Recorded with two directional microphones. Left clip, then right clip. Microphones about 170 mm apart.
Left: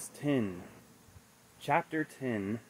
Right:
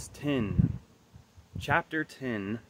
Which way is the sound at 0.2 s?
10° right (ahead or behind).